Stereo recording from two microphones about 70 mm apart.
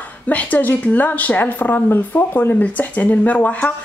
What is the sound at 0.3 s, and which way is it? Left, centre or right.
Speech, left.